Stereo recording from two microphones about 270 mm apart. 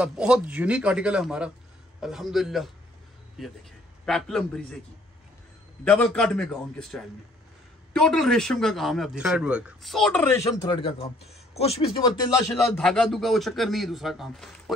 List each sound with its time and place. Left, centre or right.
0.0 s a man's voice: centre
5.9 s a man's voice: centre
12.5 s a man's voice: centre